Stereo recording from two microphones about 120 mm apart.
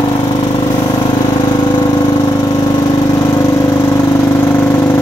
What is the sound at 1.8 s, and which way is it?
Lawn mower, 25° left (ahead or behind).